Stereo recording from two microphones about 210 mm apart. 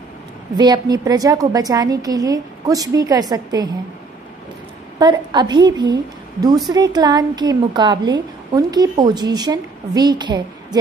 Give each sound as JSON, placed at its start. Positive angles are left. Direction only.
{"t": 0.6, "sound": "a woman's voice", "side_deg": -20}
{"t": 4.9, "sound": "a woman's voice", "side_deg": -20}